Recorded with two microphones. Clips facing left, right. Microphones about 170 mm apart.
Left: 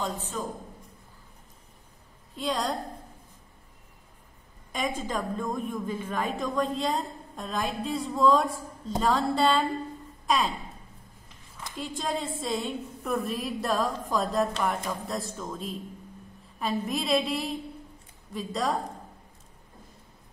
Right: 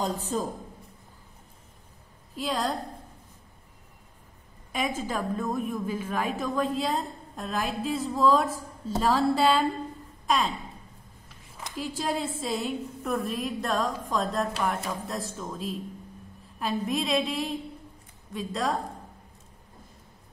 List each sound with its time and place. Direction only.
0.0 s a man's voice: 35° right (ahead or behind)
2.3 s a woman's voice: centre (ahead or behind)
4.7 s a woman's voice: 5° right (ahead or behind)
11.7 s a woman's voice: 5° right (ahead or behind)